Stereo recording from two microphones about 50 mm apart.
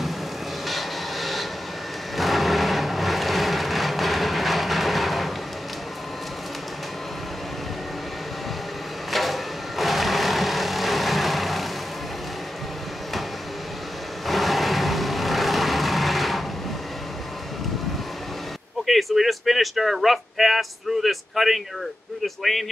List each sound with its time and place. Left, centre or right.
0.7 s vehicle: centre
9.1 s vehicle: centre
14.2 s vehicle: centre
18.9 s speech: centre